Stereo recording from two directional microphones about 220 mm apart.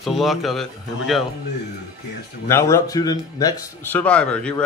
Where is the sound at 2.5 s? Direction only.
10° left (ahead or behind).